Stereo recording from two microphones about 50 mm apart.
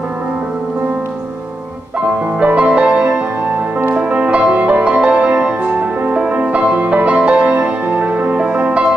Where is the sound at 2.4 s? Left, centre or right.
Right.